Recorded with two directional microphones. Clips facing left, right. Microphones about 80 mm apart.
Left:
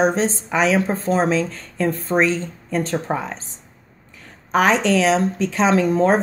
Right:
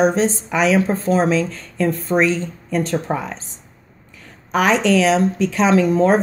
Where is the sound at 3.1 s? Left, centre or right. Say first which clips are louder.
Right 1 dB; centre.